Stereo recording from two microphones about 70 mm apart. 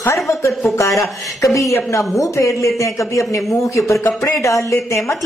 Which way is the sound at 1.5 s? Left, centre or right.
Left.